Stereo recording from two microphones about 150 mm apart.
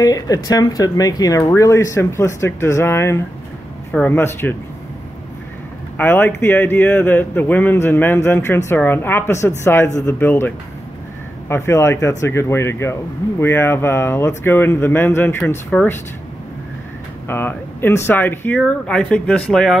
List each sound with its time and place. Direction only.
0.0 s a man's voice: 25° left (ahead or behind)
5.9 s a man's voice: 15° left (ahead or behind)
17.3 s a man's voice: 15° left (ahead or behind)